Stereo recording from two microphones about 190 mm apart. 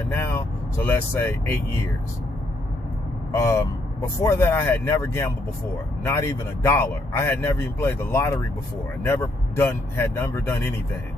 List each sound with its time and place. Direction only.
0.1 s speech: 15° left (ahead or behind)
3.3 s speech: 15° left (ahead or behind)